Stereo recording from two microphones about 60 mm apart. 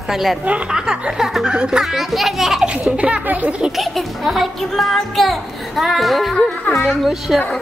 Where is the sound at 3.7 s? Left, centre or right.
Centre.